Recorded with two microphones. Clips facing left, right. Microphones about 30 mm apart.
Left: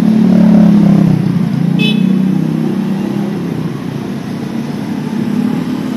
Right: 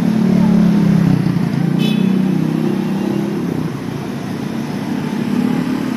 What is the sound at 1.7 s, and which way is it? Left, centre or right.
Vehicle, left.